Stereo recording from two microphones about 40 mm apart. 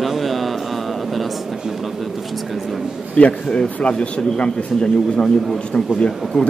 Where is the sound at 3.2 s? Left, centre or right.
Left.